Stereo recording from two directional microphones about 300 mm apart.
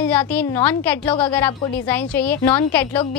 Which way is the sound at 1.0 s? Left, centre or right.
Centre.